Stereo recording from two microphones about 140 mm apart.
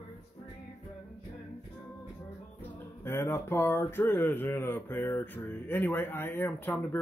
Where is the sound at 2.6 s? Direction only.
15° left (ahead or behind).